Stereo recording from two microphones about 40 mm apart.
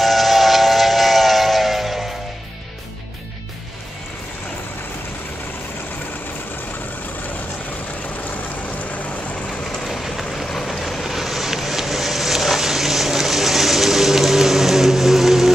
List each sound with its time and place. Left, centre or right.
0.0 s train: centre
8.7 s vehicle: left
9.8 s vehicle: centre
10.4 s vehicle: centre